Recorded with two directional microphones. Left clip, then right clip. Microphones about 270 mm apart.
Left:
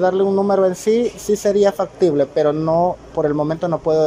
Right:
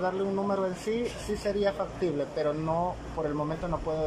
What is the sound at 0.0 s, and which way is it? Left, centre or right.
Speech, left.